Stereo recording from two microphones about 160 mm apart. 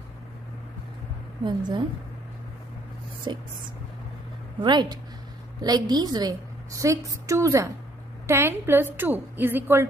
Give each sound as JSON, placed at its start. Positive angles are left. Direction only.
{"t": 1.4, "sound": "a woman's voice", "side_deg": -30}
{"t": 3.3, "sound": "a woman's voice", "side_deg": -30}
{"t": 4.6, "sound": "a woman's voice", "side_deg": -30}